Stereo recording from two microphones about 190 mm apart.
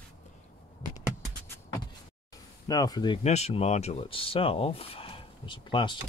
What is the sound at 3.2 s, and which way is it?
Speech, 35° left (ahead or behind).